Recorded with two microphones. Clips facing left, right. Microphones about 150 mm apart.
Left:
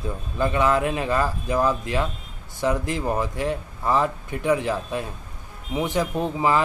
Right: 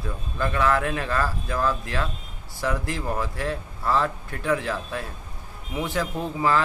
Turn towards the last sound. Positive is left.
turn(degrees=20)  # may be behind; listen again after turning